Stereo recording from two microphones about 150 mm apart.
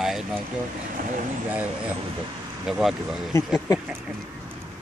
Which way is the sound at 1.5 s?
10° right (ahead or behind).